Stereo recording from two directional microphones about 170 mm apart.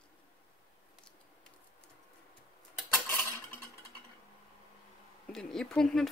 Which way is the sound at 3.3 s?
20° left (ahead or behind).